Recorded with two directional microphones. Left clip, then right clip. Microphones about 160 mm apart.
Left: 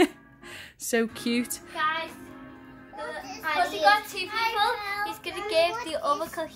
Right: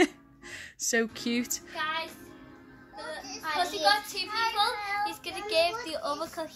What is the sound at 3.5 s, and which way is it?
Speech, 5° right (ahead or behind).